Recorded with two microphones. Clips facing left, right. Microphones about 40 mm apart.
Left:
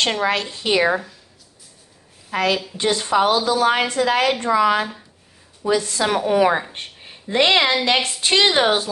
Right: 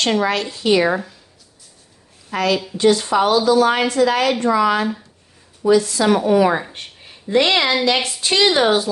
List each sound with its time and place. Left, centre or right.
0.0 s a woman's voice: left
2.3 s a woman's voice: left